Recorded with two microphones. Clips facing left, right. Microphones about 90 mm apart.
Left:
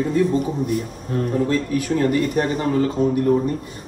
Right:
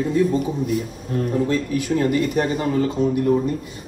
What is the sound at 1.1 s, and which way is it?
A man's voice, 40° left (ahead or behind).